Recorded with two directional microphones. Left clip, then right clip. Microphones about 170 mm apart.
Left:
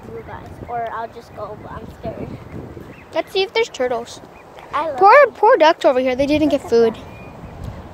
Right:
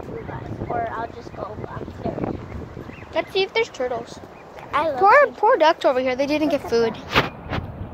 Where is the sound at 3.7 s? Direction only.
60° left (ahead or behind).